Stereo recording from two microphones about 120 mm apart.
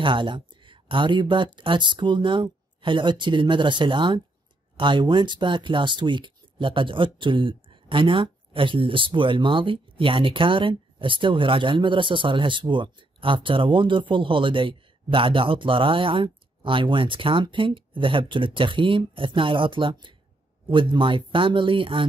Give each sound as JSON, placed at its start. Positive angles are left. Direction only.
{"t": 0.0, "sound": "speech", "side_deg": -40}